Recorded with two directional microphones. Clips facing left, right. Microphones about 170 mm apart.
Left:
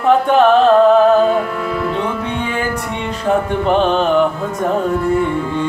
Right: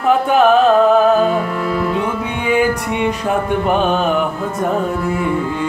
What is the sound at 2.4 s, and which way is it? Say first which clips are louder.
Music: right 5 dB; 10° right (ahead or behind).